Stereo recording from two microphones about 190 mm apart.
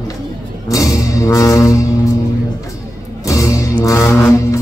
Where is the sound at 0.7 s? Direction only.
15° left (ahead or behind).